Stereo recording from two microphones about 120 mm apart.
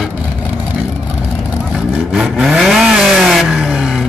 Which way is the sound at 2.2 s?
Centre (ahead or behind).